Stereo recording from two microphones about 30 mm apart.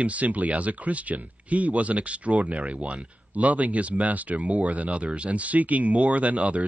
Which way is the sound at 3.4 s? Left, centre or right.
Right.